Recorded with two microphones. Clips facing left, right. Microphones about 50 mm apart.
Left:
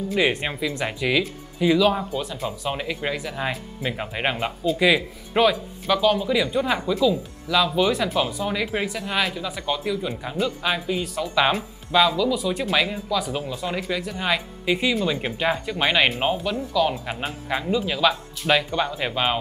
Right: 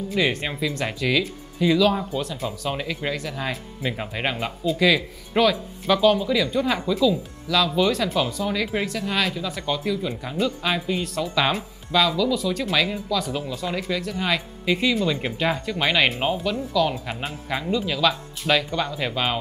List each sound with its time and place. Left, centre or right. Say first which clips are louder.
0.1 s speech: left 1 dB; centre
5.9 s speech: right 2 dB; centre